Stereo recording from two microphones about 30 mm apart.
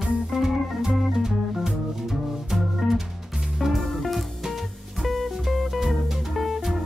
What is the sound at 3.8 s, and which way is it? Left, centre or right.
Music, centre.